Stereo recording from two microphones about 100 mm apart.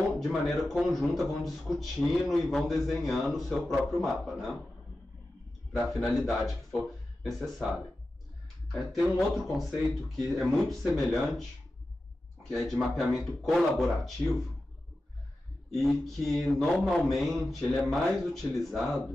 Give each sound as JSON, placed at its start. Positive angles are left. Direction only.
{"t": 0.2, "sound": "a man's voice", "side_deg": 0}
{"t": 5.7, "sound": "a man's voice", "side_deg": 0}
{"t": 8.9, "sound": "a man's voice", "side_deg": 0}
{"t": 12.4, "sound": "a man's voice", "side_deg": 5}
{"t": 15.7, "sound": "a man's voice", "side_deg": 5}